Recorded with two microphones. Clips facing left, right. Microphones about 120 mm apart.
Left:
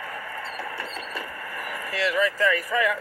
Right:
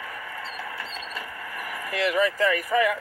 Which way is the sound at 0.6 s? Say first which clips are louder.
Left 2 dB; 65° left (ahead or behind).